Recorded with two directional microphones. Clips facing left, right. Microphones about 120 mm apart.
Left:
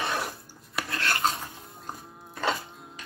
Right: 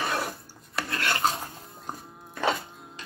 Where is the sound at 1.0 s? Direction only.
25° right (ahead or behind).